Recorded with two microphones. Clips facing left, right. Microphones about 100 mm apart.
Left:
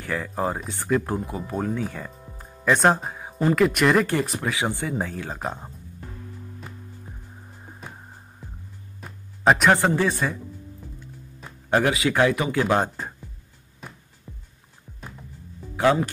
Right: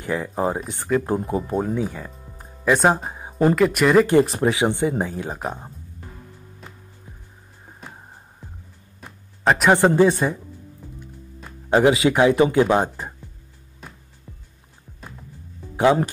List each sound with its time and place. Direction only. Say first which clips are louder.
0.0 s speech: right 3 dB; 15° right (ahead or behind)
0.9 s speech: right 2 dB; centre (ahead or behind)
1.5 s speech: even; 10° right (ahead or behind)
2.4 s music: right 1 dB; 5° right (ahead or behind)
3.1 s a sound: right 1 dB; 25° right (ahead or behind)
3.5 s speech: right 2 dB; centre (ahead or behind)
4.2 s speech: right 8 dB; 30° right (ahead or behind)
9.0 s music: left 1 dB; centre (ahead or behind)
9.7 s speech: right 5 dB; 20° right (ahead or behind)
11.7 s speech: right 5 dB; 20° right (ahead or behind)
13.7 s music: even; centre (ahead or behind)
15.7 s music: right 3 dB; 20° right (ahead or behind)